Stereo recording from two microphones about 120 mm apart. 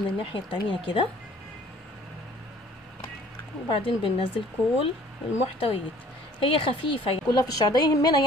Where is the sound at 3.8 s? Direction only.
45° left (ahead or behind).